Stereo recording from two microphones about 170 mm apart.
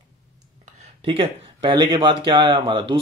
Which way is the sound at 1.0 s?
30° right (ahead or behind).